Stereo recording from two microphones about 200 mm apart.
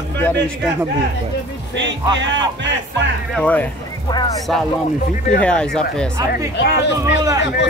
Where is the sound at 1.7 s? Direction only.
65° right (ahead or behind).